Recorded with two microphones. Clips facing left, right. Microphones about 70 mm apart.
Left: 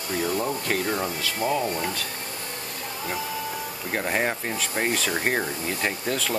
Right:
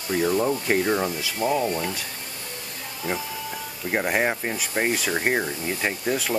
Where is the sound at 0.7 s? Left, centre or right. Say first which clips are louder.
Right 4 dB; centre.